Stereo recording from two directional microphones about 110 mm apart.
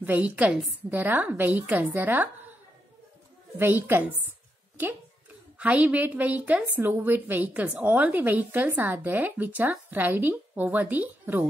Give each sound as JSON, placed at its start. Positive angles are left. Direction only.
{"t": 0.0, "sound": "speech", "side_deg": -15}
{"t": 3.5, "sound": "speech", "side_deg": -20}
{"t": 5.6, "sound": "speech", "side_deg": -10}